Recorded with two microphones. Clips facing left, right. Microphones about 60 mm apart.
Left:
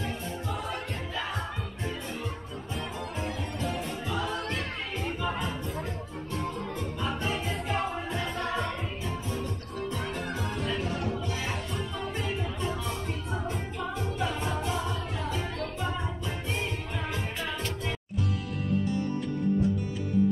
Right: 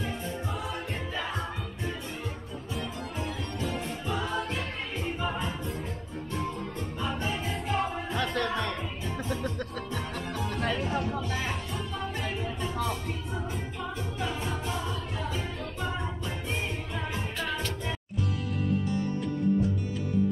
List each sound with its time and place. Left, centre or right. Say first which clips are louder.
2.7 s music: even; centre
6.3 s music: left 1 dB; centre
9.3 s music: right 2 dB; right
10.7 s music: right 1 dB; centre
17.4 s music: right 1 dB; left